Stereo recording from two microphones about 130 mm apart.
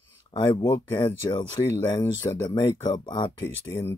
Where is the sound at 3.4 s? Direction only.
20° left (ahead or behind).